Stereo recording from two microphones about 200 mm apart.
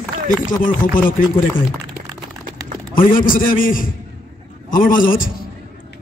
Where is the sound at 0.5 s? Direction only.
40° left (ahead or behind).